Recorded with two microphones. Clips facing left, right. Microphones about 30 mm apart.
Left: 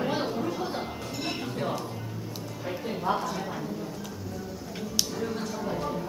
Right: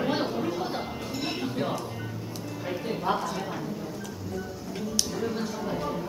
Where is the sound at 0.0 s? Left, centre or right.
Centre.